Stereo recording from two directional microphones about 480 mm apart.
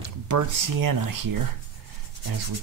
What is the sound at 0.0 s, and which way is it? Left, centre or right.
Speech, right.